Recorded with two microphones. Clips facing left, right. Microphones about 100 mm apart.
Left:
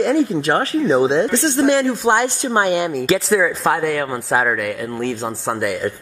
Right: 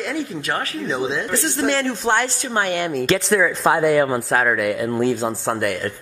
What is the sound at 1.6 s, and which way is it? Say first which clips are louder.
A woman's voice: left 5 dB; 10° left (ahead or behind).